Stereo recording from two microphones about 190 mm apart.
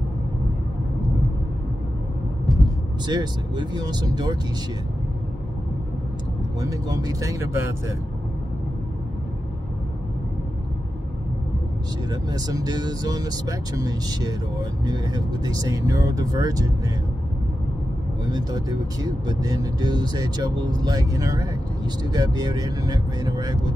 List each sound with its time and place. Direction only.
3.1 s speech: 20° right (ahead or behind)
6.6 s speech: 20° right (ahead or behind)
12.1 s speech: 20° right (ahead or behind)
18.3 s speech: 20° right (ahead or behind)